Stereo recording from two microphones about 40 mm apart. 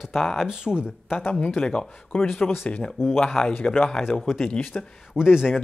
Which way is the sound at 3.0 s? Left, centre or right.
Left.